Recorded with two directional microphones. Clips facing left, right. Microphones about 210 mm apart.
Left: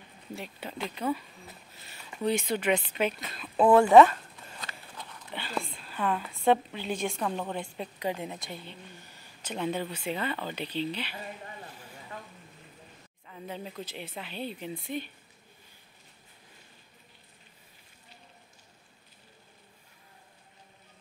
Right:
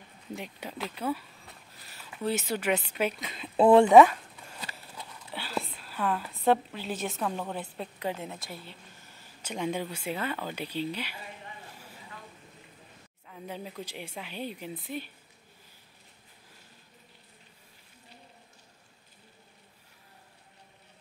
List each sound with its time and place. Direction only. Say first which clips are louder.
0.4 s speech: left 1 dB; 10° right (ahead or behind)
3.3 s speech: right 2 dB; 25° right (ahead or behind)
3.9 s a sound: even; 5° right (ahead or behind)
8.2 s a woman's voice: left 2 dB; 15° left (ahead or behind)
8.5 s speech: left 2 dB; 5° right (ahead or behind)
13.3 s speech: even; centre (ahead or behind)